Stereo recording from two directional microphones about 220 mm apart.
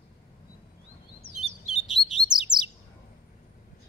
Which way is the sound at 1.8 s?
Centre (ahead or behind).